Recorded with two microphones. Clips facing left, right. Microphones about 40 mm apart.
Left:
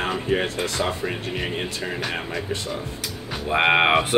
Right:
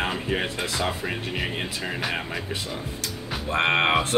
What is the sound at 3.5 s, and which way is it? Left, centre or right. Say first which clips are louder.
Speech: left 4 dB; centre.